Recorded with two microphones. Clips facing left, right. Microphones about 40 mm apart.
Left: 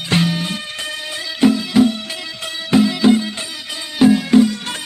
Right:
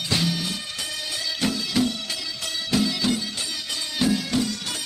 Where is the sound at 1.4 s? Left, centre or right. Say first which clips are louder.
Left 11 dB; left.